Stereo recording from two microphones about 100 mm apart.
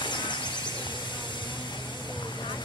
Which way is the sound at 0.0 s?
50° left (ahead or behind).